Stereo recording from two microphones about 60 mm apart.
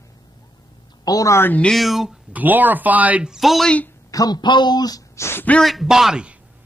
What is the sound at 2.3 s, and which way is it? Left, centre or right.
Speech, right.